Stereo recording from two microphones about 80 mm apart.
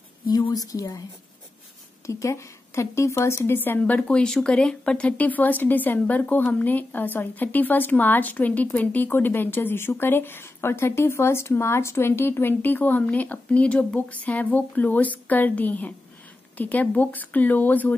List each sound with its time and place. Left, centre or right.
0.3 s a woman's voice: left
2.0 s a woman's voice: left